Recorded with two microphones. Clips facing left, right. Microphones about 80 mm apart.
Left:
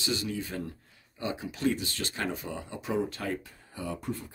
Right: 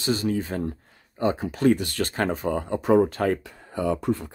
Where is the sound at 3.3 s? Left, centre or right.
Right.